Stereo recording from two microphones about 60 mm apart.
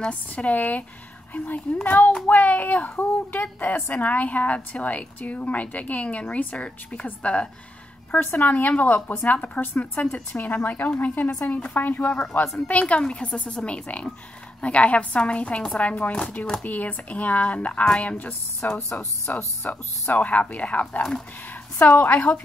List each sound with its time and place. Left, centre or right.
0.1 s a woman's voice: left
8.1 s a woman's voice: left